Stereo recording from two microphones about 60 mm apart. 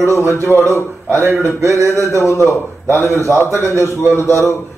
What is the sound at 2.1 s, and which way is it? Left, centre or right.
A man's voice, left.